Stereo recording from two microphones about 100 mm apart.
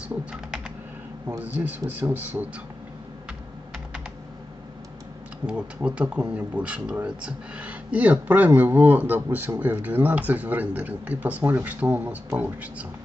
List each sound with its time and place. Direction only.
0.1 s a man's voice: 10° right (ahead or behind)
5.5 s speech: 10° right (ahead or behind)